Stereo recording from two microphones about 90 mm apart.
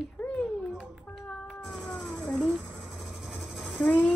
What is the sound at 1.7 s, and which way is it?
Cat, 5° left (ahead or behind).